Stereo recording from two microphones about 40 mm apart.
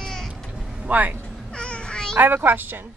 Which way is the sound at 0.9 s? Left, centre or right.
Right.